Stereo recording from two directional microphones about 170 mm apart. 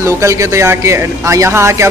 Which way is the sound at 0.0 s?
15° right (ahead or behind).